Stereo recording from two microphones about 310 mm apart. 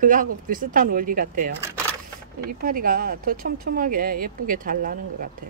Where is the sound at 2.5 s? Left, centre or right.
Right.